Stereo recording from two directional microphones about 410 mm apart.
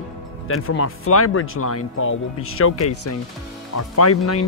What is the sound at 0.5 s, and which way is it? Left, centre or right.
Speech, left.